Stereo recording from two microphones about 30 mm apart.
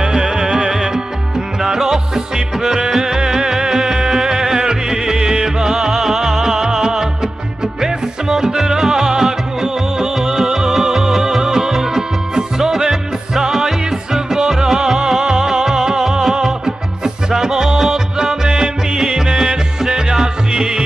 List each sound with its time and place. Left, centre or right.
0.0 s music: centre